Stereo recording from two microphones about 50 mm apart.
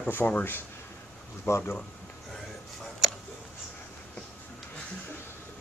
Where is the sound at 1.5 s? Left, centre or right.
Left.